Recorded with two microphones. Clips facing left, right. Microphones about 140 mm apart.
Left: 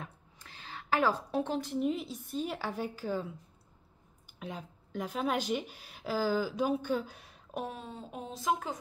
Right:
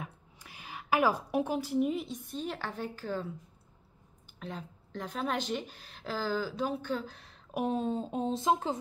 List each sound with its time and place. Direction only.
0.0 s a woman's voice: 10° right (ahead or behind); by 3.3 s 10° left (ahead or behind)
4.4 s speech: 10° left (ahead or behind)
7.6 s speech: 30° right (ahead or behind)